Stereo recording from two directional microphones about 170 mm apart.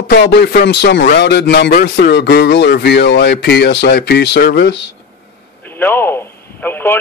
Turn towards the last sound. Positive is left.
turn(degrees=10)  # may be behind; listen again after turning